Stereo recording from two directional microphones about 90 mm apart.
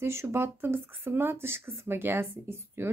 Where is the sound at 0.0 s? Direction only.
30° right (ahead or behind).